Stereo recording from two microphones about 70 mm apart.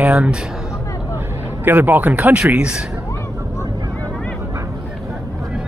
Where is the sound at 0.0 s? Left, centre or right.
Centre.